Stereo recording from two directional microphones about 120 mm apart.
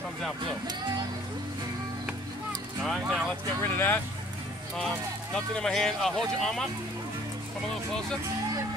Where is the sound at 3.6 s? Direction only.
15° left (ahead or behind).